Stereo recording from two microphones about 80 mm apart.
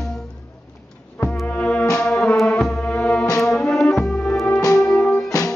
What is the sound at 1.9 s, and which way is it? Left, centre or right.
Music, centre.